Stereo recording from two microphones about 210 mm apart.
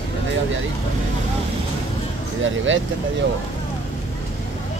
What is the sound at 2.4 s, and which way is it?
Speech, 65° right (ahead or behind).